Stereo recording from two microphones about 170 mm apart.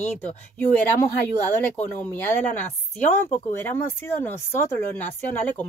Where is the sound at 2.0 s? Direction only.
10° left (ahead or behind).